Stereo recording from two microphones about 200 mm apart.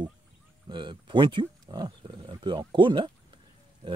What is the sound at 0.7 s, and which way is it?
Speech, 25° right (ahead or behind).